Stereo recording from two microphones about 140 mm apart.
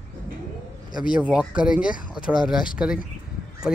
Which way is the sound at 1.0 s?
5° right (ahead or behind).